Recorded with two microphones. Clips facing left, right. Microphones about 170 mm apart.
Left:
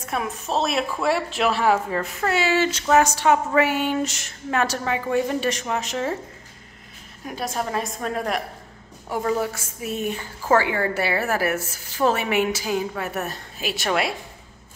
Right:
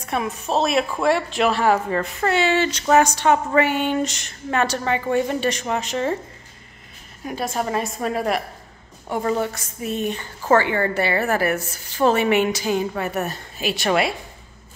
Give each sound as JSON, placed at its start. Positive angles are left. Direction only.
{"t": 0.0, "sound": "speech", "side_deg": 0}
{"t": 7.2, "sound": "speech", "side_deg": 0}